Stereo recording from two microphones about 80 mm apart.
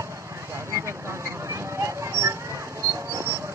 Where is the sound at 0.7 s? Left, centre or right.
Right.